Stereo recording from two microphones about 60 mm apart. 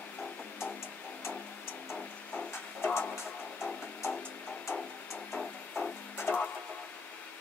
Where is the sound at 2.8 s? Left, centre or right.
Left.